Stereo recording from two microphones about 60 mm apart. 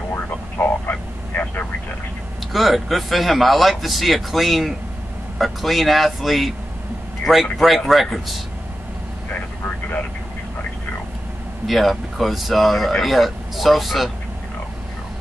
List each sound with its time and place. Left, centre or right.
0.3 s vehicle: left
2.5 s speech: centre
7.5 s speech: centre
11.6 s speech: centre